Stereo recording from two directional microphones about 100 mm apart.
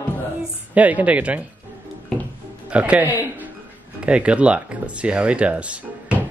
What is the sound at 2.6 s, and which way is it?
Speech, 15° right (ahead or behind).